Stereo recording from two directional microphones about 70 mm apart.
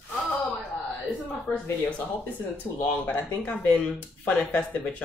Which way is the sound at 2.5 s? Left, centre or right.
Left.